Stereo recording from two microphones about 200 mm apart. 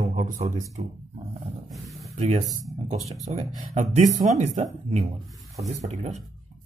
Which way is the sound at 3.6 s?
35° right (ahead or behind).